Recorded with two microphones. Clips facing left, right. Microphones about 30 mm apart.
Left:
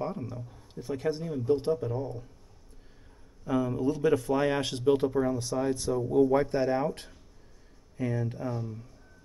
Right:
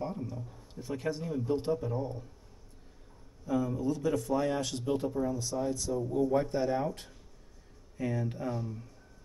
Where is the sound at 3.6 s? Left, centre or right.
Left.